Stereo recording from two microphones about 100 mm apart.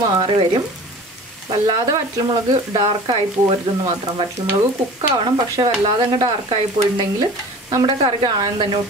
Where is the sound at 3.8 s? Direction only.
50° right (ahead or behind).